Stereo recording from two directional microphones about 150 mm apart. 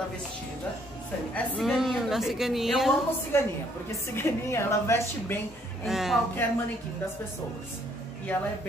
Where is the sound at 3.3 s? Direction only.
15° left (ahead or behind).